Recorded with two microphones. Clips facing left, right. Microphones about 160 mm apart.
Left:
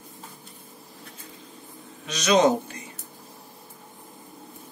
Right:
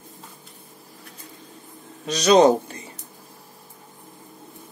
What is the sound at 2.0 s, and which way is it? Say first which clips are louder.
Speech: right 5 dB; 35° right (ahead or behind).